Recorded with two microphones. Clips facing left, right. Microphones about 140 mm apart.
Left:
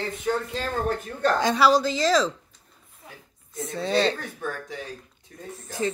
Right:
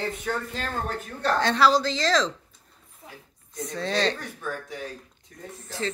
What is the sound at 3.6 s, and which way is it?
Speech, 5° left (ahead or behind).